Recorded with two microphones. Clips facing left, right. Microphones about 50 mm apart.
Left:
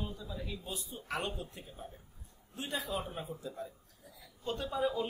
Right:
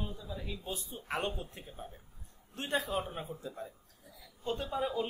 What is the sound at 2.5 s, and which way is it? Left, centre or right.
A man's voice, right.